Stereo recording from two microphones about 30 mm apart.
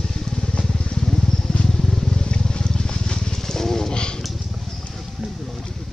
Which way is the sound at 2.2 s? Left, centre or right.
Left.